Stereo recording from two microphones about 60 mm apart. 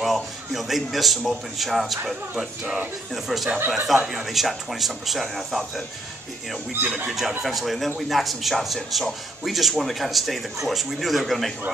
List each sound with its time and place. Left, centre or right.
0.0 s speech: centre
3.5 s speech: right
3.8 s speech: centre
7.1 s speech: centre